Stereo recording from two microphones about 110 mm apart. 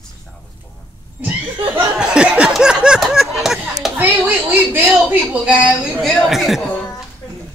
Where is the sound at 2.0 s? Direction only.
10° right (ahead or behind).